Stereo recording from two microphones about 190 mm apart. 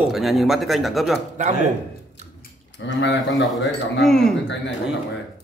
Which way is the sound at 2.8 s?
70° left (ahead or behind).